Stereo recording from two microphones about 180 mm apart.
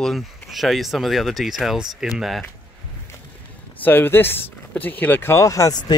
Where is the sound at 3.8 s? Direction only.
10° left (ahead or behind).